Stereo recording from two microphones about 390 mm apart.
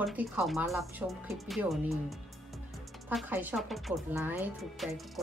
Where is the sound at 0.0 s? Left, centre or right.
Centre.